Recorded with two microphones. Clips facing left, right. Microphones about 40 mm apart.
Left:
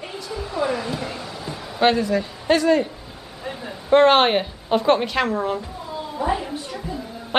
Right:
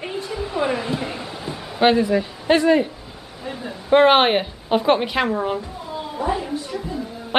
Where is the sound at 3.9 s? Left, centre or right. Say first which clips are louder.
Right 1 dB; centre.